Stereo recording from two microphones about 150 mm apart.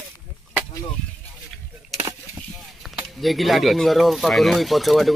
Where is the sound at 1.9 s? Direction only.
20° right (ahead or behind).